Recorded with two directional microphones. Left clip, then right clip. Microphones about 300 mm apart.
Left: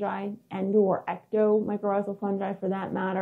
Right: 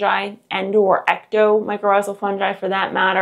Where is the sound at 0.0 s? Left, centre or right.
Centre.